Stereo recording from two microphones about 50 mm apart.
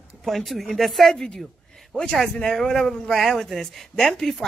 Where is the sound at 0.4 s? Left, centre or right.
Centre.